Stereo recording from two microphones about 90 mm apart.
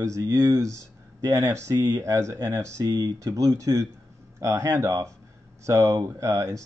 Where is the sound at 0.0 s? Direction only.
40° right (ahead or behind).